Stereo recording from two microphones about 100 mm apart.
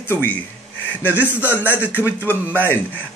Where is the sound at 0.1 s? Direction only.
20° left (ahead or behind).